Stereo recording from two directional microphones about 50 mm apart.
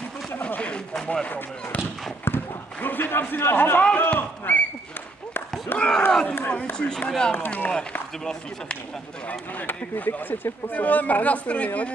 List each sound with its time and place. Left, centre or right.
1.0 s speech: left
2.2 s a sound: left
3.9 s speech: left
5.8 s speech: centre
7.5 s speech: left
9.8 s speech: left